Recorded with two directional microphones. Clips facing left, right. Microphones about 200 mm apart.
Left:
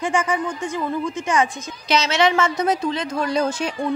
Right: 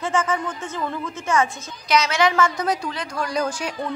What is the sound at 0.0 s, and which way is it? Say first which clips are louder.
A woman's voice: left 1 dB; 15° left (ahead or behind).